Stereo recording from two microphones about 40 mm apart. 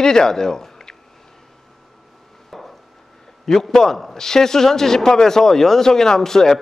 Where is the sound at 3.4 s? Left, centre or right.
Centre.